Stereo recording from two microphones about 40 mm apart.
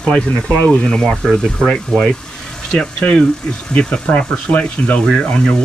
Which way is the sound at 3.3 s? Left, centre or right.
Centre.